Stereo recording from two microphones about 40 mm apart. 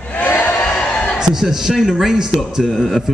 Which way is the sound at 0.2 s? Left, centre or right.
Left.